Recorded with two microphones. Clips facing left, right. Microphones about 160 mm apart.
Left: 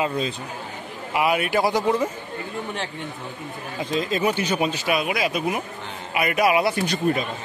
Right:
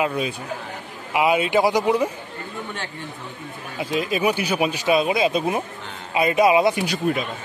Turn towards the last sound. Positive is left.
turn(degrees=-5)  # may be behind; listen again after turning